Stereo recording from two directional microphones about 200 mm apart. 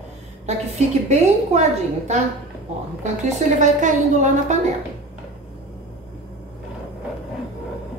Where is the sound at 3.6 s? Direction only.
35° right (ahead or behind).